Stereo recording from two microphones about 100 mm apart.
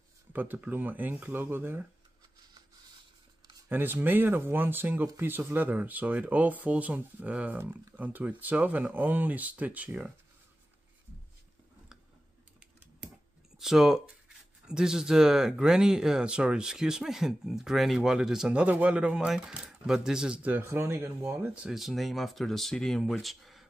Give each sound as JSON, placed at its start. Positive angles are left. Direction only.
{"t": 0.3, "sound": "speech", "side_deg": -15}
{"t": 3.6, "sound": "speech", "side_deg": -20}
{"t": 13.6, "sound": "speech", "side_deg": -5}
{"t": 20.5, "sound": "speech", "side_deg": -25}
{"t": 21.5, "sound": "speech", "side_deg": -5}